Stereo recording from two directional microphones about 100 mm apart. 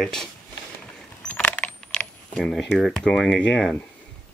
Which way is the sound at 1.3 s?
15° left (ahead or behind).